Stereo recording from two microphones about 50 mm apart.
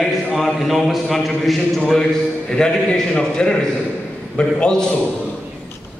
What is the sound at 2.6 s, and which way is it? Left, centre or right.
A man's voice, centre.